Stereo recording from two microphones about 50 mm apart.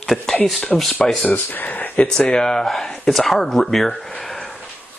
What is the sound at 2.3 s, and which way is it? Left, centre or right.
Speech, centre.